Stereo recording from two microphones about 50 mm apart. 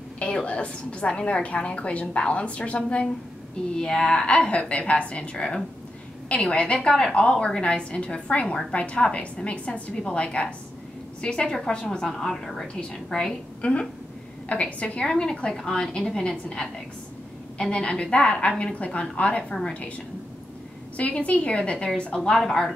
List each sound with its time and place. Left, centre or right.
0.2 s a woman's voice: left
4.3 s a woman's voice: left
12.1 s a woman's voice: centre; by 19.9 s left
20.9 s a woman's voice: left